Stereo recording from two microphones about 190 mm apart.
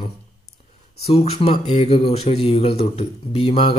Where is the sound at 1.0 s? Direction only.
30° left (ahead or behind).